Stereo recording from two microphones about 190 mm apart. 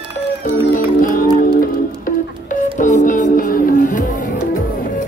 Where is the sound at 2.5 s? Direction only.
40° left (ahead or behind).